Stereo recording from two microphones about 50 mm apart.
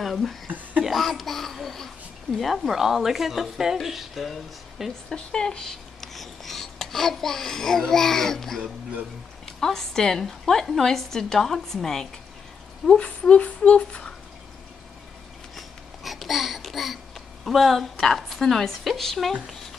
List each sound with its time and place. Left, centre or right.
0.0 s speech: centre
0.8 s babbling: centre
2.3 s speech: centre
5.1 s a woman's voice: centre
12.8 s speech: centre
13.4 s a sound: left
15.5 s babbling: centre
17.5 s speech: centre